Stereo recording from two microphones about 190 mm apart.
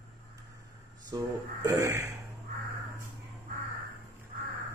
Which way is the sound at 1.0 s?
15° right (ahead or behind).